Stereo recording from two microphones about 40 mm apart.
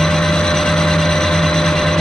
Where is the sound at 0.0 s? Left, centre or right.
Centre.